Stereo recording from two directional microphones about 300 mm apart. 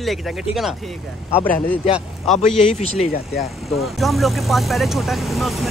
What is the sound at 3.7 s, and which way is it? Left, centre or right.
Speech, centre.